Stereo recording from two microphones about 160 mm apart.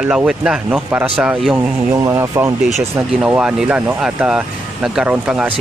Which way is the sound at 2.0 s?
20° right (ahead or behind).